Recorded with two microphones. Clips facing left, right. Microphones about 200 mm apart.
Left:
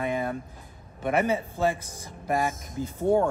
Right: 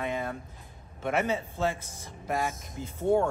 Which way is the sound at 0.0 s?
10° left (ahead or behind).